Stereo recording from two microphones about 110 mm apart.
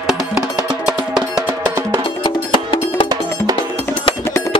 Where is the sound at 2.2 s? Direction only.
50° left (ahead or behind).